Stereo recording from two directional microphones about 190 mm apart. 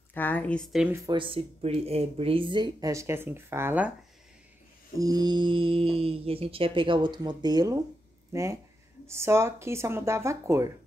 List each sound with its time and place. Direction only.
0.1 s a woman's voice: 10° left (ahead or behind)
0.9 s speech: 20° right (ahead or behind)
4.9 s speech: 20° right (ahead or behind)